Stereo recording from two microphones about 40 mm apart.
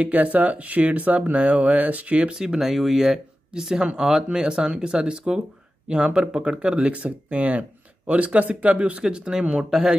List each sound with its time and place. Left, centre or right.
0.0 s speech: right
2.3 s speech: centre; by 9.0 s right
9.0 s speech: centre